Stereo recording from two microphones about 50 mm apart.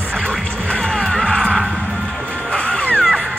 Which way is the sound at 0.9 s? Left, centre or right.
Centre.